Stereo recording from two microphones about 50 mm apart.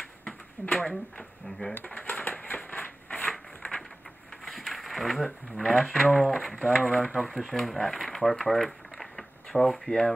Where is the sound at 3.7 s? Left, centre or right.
Centre.